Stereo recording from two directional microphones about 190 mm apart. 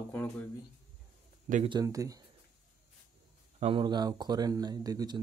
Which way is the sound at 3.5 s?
30° right (ahead or behind).